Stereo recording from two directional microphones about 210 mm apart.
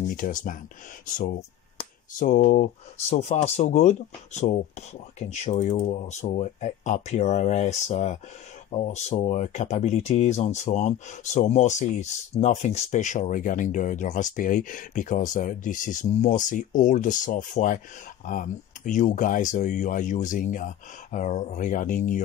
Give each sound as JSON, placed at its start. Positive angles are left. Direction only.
{"t": 0.1, "sound": "speech", "side_deg": 40}